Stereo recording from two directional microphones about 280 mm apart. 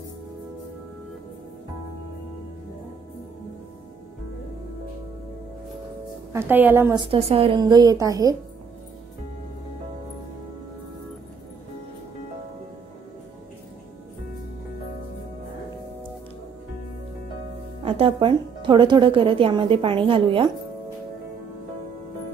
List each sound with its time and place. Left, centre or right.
6.3 s speech: centre
17.8 s speech: centre